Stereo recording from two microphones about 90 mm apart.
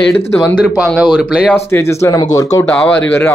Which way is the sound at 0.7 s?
5° right (ahead or behind).